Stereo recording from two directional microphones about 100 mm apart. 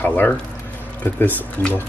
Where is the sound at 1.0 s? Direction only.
20° left (ahead or behind).